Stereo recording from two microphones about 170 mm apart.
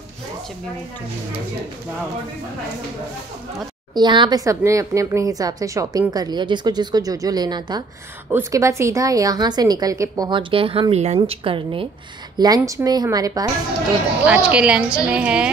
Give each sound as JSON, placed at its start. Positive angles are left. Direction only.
{"t": 3.9, "sound": "speech", "side_deg": -25}
{"t": 12.4, "sound": "speech", "side_deg": -20}
{"t": 14.2, "sound": "speech", "side_deg": -5}